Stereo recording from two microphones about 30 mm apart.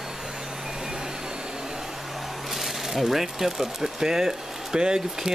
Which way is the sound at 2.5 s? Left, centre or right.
Centre.